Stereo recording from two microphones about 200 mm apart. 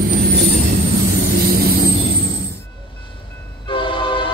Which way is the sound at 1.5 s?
50° right (ahead or behind).